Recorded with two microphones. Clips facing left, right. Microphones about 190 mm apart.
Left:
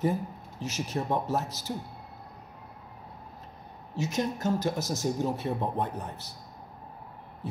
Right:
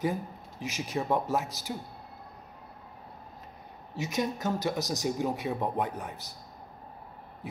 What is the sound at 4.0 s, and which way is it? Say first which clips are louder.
Speech: left 1 dB; 15° right (ahead or behind).